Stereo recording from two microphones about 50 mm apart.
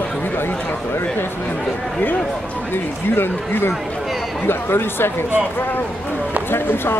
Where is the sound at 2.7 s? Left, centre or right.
Left.